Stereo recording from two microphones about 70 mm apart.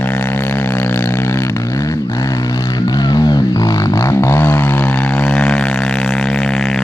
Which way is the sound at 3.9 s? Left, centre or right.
Left.